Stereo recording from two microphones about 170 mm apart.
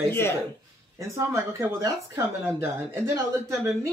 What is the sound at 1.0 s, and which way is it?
Speech, 15° right (ahead or behind).